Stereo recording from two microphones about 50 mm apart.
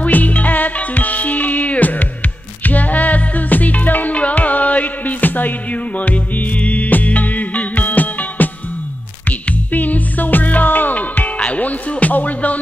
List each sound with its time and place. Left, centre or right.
0.0 s music: left